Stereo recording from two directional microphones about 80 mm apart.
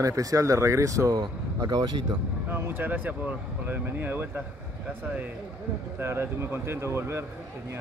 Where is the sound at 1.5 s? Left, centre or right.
Right.